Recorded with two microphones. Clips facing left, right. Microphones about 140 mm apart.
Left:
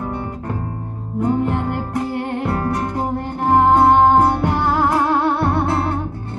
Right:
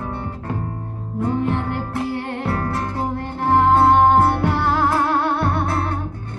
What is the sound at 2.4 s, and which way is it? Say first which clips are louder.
Music: left 2 dB; 15° left (ahead or behind).